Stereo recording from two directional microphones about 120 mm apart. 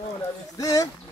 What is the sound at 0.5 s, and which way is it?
Speech, 30° left (ahead or behind).